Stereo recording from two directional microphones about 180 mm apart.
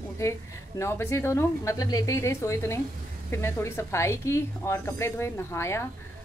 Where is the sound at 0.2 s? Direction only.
15° left (ahead or behind).